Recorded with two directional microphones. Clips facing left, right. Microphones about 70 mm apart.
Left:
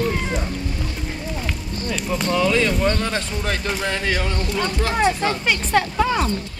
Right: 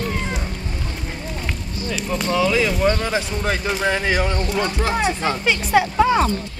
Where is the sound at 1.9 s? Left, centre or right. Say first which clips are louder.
Even; centre.